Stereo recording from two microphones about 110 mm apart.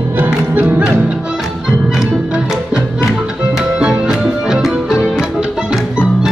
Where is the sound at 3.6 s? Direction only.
5° right (ahead or behind).